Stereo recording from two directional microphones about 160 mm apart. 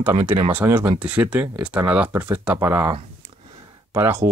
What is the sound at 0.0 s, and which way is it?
Speech, 15° right (ahead or behind).